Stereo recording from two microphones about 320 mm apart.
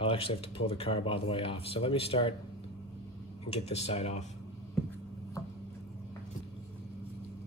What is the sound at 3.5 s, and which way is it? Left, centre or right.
Speech, centre.